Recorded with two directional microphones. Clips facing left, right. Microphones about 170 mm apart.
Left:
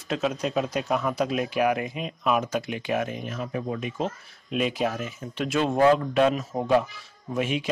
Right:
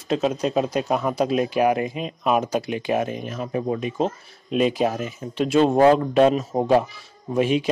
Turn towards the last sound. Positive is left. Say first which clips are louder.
# right 7 dB
turn(degrees=-35)  # may be behind; listen again after turning